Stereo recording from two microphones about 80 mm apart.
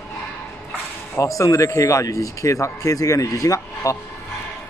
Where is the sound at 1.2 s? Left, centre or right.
Left.